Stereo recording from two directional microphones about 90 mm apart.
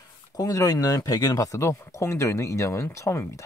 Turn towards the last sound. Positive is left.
turn(degrees=35)  # may be behind; listen again after turning